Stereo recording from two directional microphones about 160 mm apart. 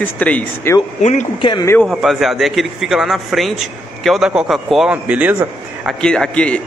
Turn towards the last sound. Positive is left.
turn(degrees=5)  # may be behind; listen again after turning